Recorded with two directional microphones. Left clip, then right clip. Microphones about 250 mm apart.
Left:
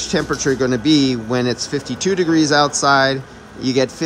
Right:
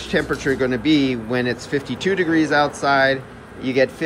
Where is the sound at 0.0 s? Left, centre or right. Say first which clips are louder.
Left 2 dB; centre.